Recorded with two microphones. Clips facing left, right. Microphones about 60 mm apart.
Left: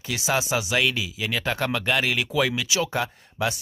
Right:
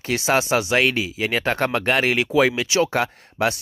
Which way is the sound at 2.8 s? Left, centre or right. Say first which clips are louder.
Right 5 dB; right.